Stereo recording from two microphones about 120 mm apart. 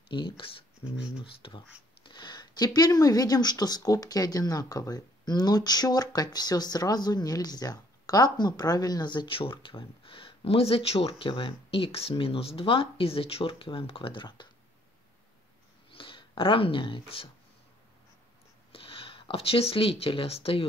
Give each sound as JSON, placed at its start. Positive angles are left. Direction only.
{"t": 0.1, "sound": "speech", "side_deg": 45}
{"t": 15.9, "sound": "a sound", "side_deg": 45}
{"t": 18.7, "sound": "speech", "side_deg": 50}